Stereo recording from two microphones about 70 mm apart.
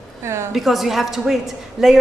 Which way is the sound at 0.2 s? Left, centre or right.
Right.